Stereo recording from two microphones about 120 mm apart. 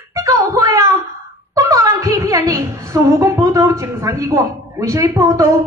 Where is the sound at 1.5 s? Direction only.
30° right (ahead or behind).